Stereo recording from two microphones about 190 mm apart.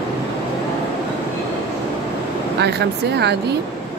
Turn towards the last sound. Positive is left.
turn(degrees=-60)  # may be behind; listen again after turning